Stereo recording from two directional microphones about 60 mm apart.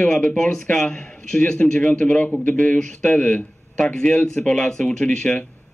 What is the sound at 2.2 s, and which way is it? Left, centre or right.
A man's voice, left.